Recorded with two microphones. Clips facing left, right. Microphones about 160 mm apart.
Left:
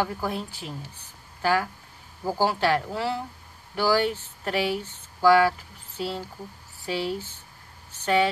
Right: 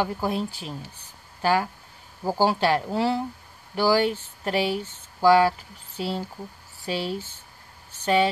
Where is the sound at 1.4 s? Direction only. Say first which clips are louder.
Right 1 dB; 20° right (ahead or behind).